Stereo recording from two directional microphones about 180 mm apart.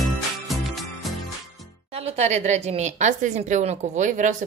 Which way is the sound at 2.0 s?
40° right (ahead or behind).